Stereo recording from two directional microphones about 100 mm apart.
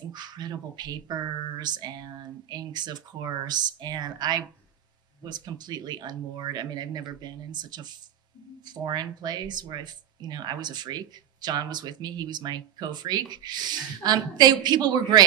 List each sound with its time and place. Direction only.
0.1 s speech: 45° right (ahead or behind)